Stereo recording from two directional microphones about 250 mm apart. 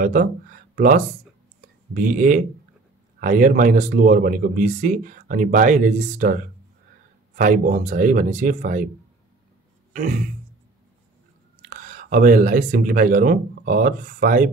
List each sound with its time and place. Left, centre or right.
0.0 s speech: right
7.3 s speech: right
9.9 s speech: right
11.7 s speech: right